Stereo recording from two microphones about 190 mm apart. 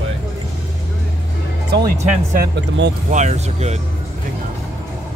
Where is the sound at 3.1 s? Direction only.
35° right (ahead or behind).